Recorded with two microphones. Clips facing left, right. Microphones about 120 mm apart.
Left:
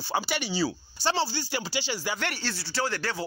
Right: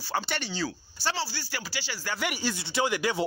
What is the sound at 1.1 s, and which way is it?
Speech, 25° left (ahead or behind).